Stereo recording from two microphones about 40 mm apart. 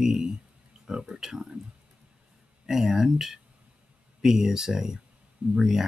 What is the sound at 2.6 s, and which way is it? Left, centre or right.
Speech, centre.